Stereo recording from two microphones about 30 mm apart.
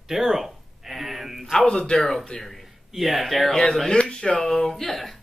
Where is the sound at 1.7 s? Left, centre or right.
Left.